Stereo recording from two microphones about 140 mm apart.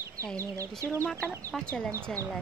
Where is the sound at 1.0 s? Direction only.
10° left (ahead or behind).